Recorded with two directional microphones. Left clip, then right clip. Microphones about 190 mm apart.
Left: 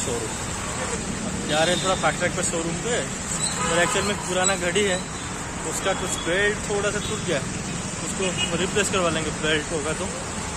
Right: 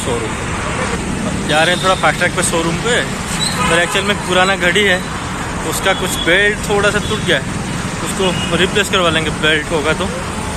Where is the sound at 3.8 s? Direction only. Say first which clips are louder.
Right 7 dB; centre (ahead or behind).